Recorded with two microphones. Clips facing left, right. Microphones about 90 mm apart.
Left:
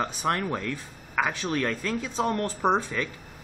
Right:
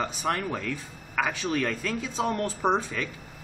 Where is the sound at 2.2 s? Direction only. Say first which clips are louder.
Left 1 dB; 15° right (ahead or behind).